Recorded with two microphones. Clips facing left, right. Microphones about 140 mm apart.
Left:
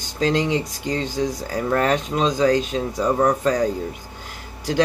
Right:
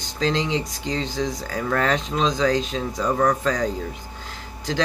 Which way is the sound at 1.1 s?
15° left (ahead or behind).